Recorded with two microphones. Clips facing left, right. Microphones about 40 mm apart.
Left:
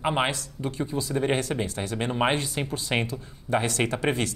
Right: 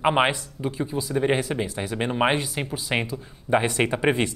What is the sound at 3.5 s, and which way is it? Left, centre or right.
Speech, centre.